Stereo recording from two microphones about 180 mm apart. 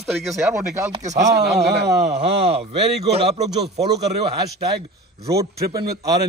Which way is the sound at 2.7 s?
35° right (ahead or behind).